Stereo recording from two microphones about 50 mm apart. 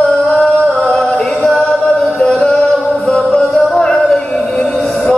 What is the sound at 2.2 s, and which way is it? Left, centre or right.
Music, centre.